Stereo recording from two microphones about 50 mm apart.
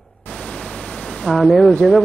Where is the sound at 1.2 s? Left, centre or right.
Centre.